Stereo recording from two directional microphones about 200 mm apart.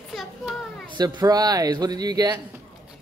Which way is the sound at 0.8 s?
20° right (ahead or behind).